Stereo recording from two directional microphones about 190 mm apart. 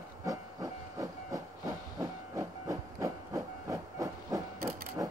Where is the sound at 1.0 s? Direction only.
15° right (ahead or behind).